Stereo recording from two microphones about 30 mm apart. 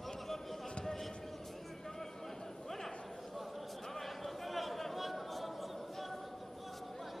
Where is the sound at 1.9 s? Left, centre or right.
Centre.